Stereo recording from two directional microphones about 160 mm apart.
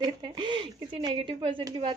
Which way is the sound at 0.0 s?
30° right (ahead or behind).